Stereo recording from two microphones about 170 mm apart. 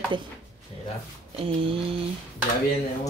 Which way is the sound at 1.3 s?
30° right (ahead or behind).